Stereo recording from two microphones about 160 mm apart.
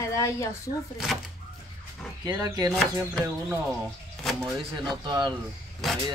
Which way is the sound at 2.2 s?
25° right (ahead or behind).